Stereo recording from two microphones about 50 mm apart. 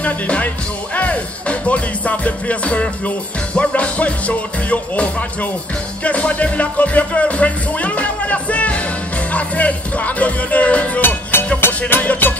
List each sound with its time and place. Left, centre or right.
0.0 s music: left
11.0 s music: left